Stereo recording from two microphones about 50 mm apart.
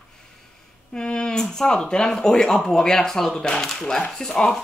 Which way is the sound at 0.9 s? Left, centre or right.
Centre.